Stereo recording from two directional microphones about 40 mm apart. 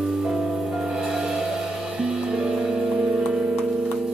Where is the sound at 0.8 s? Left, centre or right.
Centre.